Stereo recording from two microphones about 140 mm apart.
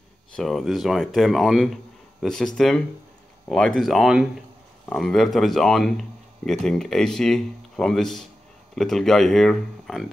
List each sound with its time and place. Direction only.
0.4 s speech: centre (ahead or behind)